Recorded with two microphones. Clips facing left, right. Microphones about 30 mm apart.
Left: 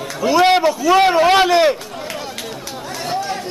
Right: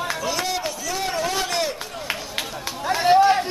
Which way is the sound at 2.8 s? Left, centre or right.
Right.